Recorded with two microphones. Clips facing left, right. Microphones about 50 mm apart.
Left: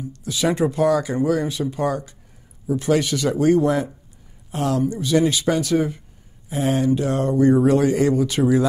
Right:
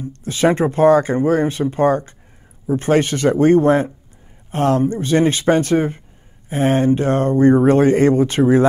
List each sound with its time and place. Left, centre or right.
0.0 s speech: right